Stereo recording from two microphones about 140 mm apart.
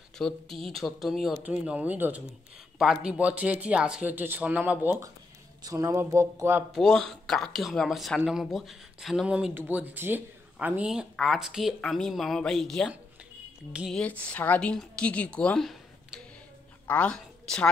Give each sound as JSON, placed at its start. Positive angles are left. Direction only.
{"t": 0.2, "sound": "speech", "side_deg": 0}
{"t": 5.6, "sound": "speech", "side_deg": -25}
{"t": 6.7, "sound": "speech", "side_deg": 0}
{"t": 13.9, "sound": "a woman's voice", "side_deg": 10}